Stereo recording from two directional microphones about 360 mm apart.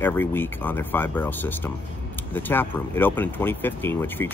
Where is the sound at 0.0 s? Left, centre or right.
Centre.